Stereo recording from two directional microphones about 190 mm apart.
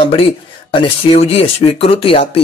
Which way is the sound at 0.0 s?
30° left (ahead or behind).